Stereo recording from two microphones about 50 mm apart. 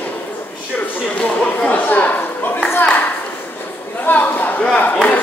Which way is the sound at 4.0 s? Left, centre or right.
Left.